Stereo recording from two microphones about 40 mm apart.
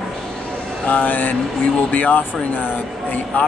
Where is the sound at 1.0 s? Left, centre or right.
Left.